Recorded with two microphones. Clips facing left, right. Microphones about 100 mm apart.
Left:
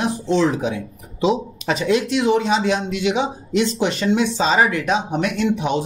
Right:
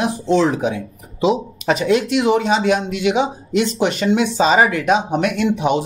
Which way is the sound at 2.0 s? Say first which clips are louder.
Right 2 dB; 60° right (ahead or behind).